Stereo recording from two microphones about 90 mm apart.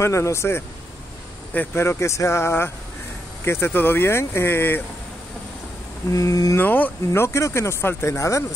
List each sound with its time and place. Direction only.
0.0 s speech: 30° left (ahead or behind)
1.5 s speech: 20° left (ahead or behind)
1.8 s speech: 30° left (ahead or behind)
6.1 s speech: 40° left (ahead or behind)
6.6 s speech: 20° left (ahead or behind)